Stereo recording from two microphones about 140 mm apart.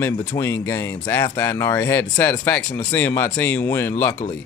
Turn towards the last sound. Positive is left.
turn(degrees=15)  # may be behind; listen again after turning